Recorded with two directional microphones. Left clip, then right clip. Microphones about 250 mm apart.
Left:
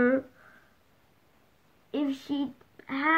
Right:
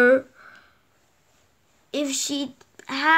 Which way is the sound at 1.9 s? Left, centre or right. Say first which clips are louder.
Right 5 dB; right.